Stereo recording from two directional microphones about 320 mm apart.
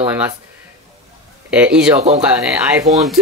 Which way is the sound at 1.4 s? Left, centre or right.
Centre.